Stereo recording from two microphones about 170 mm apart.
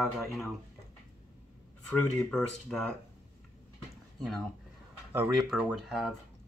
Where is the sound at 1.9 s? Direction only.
5° left (ahead or behind).